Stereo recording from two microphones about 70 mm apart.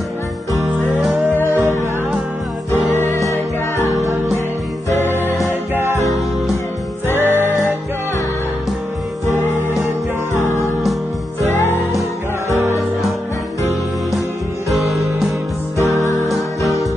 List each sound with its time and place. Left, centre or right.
1.5 s music: right
2.7 s music: left
5.1 s music: left
5.8 s music: right
7.2 s music: right
10.3 s music: left
14.7 s music: centre